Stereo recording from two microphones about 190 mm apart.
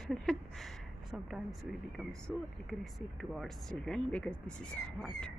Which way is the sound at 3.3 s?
Centre (ahead or behind).